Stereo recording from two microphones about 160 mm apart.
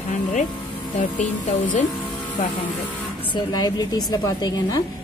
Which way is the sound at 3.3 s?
25° left (ahead or behind).